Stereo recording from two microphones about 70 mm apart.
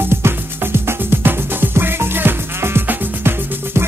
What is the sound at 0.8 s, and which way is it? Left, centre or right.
Music, right.